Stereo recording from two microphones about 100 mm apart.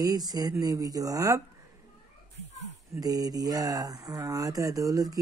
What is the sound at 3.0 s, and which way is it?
Speech, 40° right (ahead or behind).